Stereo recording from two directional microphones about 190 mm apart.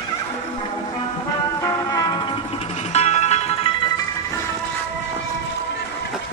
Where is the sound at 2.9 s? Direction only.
35° left (ahead or behind).